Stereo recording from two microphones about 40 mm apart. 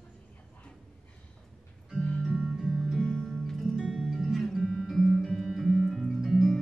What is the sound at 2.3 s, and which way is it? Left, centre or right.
Music, centre.